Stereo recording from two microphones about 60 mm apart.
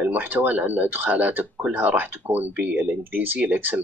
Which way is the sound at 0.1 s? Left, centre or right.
Right.